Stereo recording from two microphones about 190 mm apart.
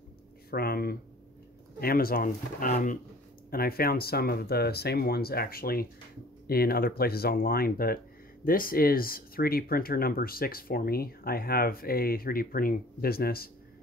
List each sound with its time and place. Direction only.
0.5 s speech: 55° left (ahead or behind)